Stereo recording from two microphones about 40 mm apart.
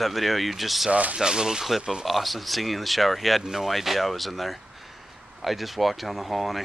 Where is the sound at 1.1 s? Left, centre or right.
Centre.